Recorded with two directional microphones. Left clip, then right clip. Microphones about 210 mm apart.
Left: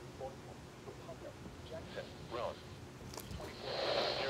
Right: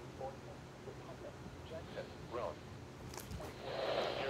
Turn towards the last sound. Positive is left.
turn(degrees=35)  # may be behind; listen again after turning